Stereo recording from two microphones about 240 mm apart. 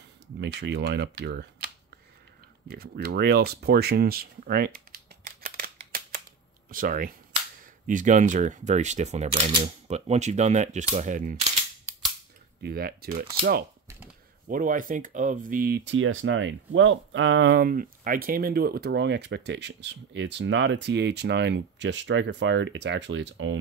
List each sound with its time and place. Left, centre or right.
0.4 s speech: right
2.7 s speech: right
12.6 s speech: right